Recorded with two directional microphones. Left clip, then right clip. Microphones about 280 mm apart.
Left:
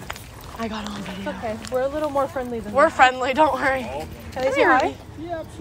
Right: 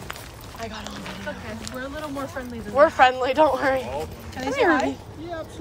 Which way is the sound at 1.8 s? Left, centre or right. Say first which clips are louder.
Left 10 dB; centre.